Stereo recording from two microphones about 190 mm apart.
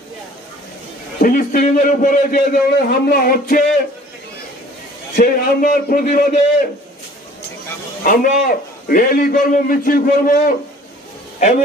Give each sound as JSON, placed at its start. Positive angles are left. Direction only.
{"t": 1.2, "sound": "a man's voice", "side_deg": 50}
{"t": 5.1, "sound": "a man's voice", "side_deg": 50}
{"t": 8.0, "sound": "a man's voice", "side_deg": 45}